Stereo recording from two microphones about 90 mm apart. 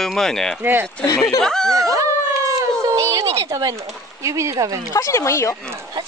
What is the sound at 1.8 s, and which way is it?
Dog, 35° right (ahead or behind).